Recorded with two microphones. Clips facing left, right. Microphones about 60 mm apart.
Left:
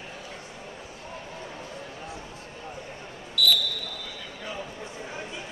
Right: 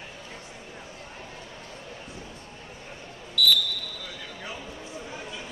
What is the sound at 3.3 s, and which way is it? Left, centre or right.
Basketball bounce, centre.